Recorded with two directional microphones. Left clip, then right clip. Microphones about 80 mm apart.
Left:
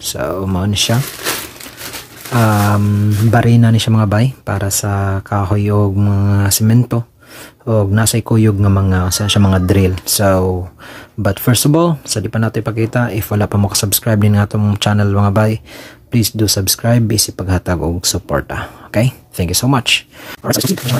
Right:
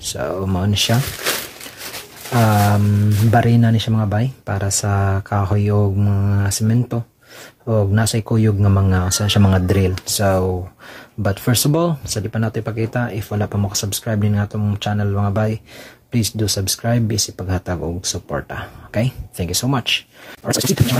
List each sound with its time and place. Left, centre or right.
0.0 s speech: left
2.3 s speech: centre
3.8 s speech: left
4.5 s speech: centre
4.8 s speech: centre; by 6.5 s left
6.6 s speech: left
7.6 s speech: left
8.5 s speech: centre
9.7 s speech: left
16.1 s speech: left
18.5 s speech: left